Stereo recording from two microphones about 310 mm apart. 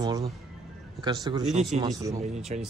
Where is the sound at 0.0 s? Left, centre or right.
Centre.